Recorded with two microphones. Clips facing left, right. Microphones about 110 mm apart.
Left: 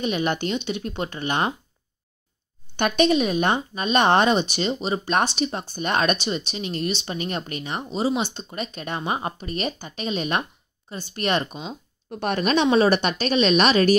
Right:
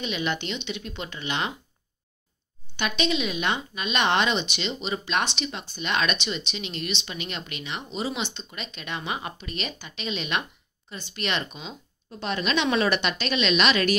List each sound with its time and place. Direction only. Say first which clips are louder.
0.0 s speech: left 5 dB; 45° left (ahead or behind)
2.7 s speech: left 7 dB; 50° left (ahead or behind)
12.1 s speech: left 5 dB; 50° left (ahead or behind)
12.6 s speech: left 6 dB; 35° left (ahead or behind)